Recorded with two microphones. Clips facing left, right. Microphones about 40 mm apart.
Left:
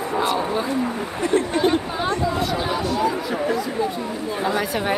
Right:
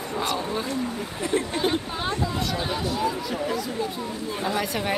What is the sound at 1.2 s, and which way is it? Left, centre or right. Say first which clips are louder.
A woman's voice: left 6 dB; centre.